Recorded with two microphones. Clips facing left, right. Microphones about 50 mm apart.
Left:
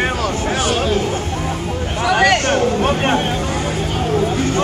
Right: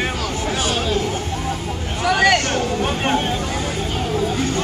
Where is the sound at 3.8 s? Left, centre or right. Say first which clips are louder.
Left 4 dB; left.